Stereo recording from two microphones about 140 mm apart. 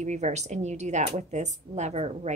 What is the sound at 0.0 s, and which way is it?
Speech, 55° right (ahead or behind).